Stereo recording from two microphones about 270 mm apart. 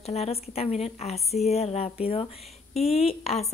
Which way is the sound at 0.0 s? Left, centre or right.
Left.